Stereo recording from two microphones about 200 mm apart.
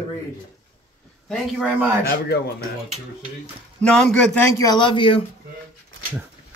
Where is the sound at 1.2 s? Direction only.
Centre (ahead or behind).